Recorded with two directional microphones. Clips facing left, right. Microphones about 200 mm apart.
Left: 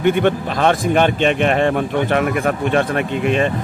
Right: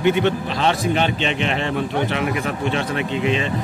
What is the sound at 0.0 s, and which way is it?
Speech, 50° left (ahead or behind).